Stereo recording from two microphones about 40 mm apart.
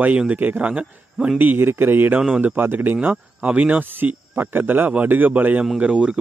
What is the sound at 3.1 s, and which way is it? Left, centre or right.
Speech, right.